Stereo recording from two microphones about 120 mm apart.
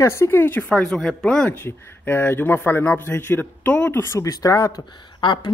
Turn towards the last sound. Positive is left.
turn(degrees=40)  # may be behind; listen again after turning